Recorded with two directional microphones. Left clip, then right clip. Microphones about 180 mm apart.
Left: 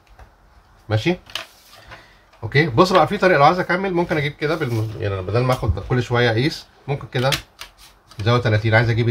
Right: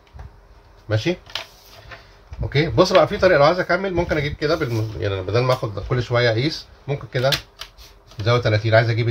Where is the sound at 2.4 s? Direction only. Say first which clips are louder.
Left 2 dB; 20° left (ahead or behind).